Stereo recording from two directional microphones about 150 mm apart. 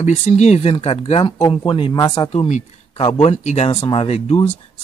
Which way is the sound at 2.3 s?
50° left (ahead or behind).